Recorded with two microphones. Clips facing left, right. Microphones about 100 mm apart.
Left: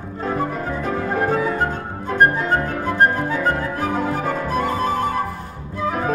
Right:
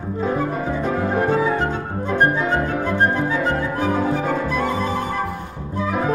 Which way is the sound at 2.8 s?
40° left (ahead or behind).